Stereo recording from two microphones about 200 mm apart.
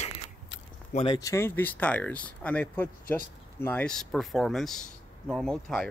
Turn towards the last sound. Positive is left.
turn(degrees=5)  # may be behind; listen again after turning